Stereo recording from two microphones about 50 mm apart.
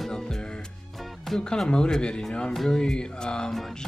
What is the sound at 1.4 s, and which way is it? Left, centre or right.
Speech, centre.